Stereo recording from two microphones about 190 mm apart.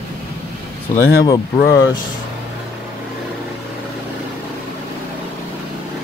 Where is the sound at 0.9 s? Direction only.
15° left (ahead or behind).